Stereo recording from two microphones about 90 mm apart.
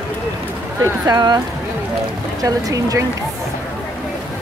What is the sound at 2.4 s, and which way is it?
Speech, 40° right (ahead or behind).